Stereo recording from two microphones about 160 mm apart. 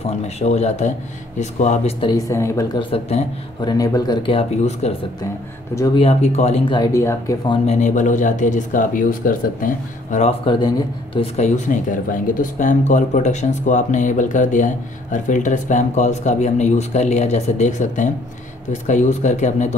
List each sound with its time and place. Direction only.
0.0 s speech: 45° left (ahead or behind)
2.0 s speech: 25° left (ahead or behind)
2.8 s speech: 40° left (ahead or behind)
3.6 s speech: 25° left (ahead or behind)
4.3 s speech: 40° left (ahead or behind)
5.9 s speech: 40° left (ahead or behind)
6.9 s speech: 20° left (ahead or behind)
7.6 s speech: 50° left (ahead or behind)
10.1 s speech: 40° left (ahead or behind)
11.1 s speech: 45° left (ahead or behind)